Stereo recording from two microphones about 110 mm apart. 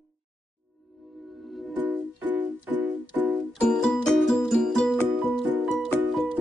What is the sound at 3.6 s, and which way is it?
Music, 5° left (ahead or behind).